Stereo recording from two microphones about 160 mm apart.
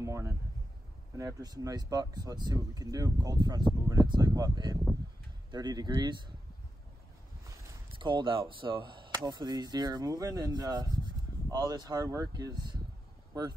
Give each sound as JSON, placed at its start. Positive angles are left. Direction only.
{"t": 0.0, "sound": "speech", "side_deg": -20}
{"t": 8.0, "sound": "speech", "side_deg": -30}